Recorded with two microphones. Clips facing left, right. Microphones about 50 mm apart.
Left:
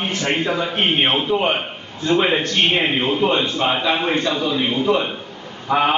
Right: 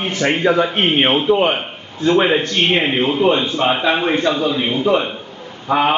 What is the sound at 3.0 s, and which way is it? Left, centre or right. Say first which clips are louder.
A man's voice: right 3 dB; centre.